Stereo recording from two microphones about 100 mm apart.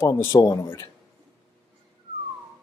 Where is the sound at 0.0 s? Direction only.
25° left (ahead or behind).